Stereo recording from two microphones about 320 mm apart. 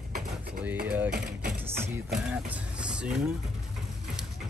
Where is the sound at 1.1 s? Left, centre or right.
Right.